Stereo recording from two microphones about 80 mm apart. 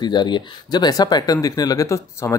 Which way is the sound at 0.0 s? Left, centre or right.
Left.